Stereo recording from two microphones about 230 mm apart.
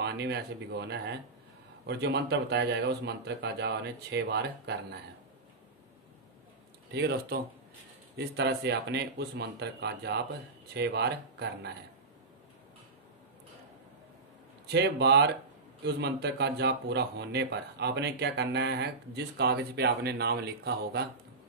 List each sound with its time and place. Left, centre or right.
0.0 s speech: right
6.9 s speech: right
14.7 s speech: right